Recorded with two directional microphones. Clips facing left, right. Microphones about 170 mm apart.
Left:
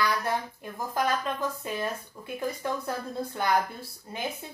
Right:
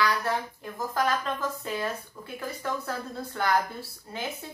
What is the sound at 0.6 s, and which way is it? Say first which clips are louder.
A woman's voice: right 2 dB; 15° left (ahead or behind).